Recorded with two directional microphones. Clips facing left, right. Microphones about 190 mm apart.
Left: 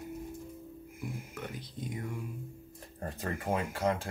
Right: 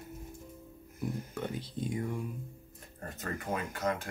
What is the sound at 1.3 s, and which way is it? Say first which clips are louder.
Speech: right 5 dB; 30° right (ahead or behind).